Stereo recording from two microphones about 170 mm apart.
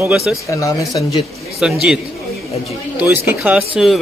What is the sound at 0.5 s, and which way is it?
Speech, 20° left (ahead or behind).